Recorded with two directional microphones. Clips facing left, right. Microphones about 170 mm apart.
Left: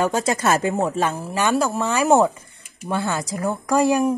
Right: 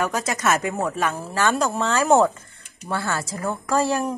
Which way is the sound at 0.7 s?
20° left (ahead or behind).